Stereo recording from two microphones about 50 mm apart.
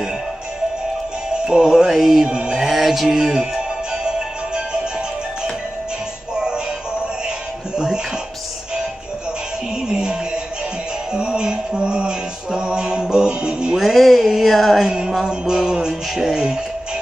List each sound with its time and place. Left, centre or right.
1.4 s music: centre
2.2 s mantra: centre
2.7 s music: centre
6.3 s music: centre
9.8 s music: centre
11.1 s a sound: centre
12.4 s music: centre
13.7 s a sound: centre
14.8 s music: centre